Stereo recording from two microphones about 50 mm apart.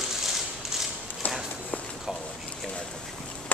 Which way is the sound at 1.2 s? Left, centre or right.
Left.